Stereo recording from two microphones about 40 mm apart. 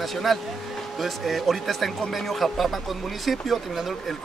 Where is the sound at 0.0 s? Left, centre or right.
Centre.